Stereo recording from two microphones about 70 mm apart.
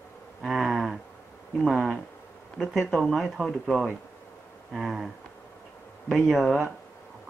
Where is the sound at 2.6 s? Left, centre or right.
Centre.